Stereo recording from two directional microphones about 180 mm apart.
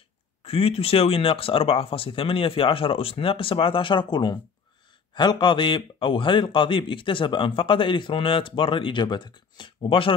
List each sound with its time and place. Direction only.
0.4 s a man's voice: 35° left (ahead or behind)